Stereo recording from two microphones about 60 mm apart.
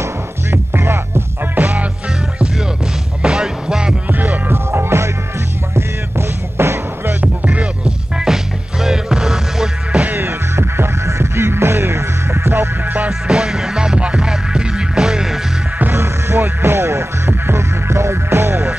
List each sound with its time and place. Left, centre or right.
0.0 s music: right
1.6 s music: right
3.2 s music: centre
4.1 s music: right
4.6 s music: right
7.2 s music: right
7.8 s music: centre
10.1 s music: right
13.3 s music: centre
15.8 s music: right